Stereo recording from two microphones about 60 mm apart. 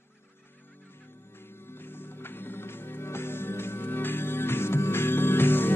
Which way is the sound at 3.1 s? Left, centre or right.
Left.